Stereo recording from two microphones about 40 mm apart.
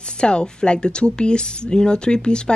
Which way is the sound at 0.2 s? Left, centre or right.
Left.